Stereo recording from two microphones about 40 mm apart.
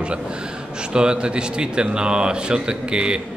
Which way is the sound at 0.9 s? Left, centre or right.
Right.